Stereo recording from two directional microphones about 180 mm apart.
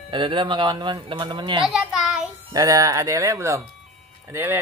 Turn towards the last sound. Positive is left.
turn(degrees=-15)  # may be behind; listen again after turning